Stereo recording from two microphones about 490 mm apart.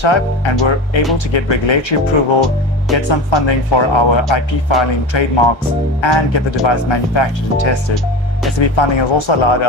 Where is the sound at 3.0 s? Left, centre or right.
Left.